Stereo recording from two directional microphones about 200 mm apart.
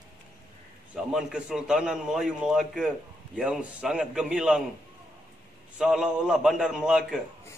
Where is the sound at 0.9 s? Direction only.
Centre (ahead or behind).